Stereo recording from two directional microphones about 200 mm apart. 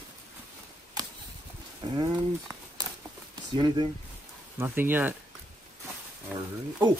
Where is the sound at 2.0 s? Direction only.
20° right (ahead or behind).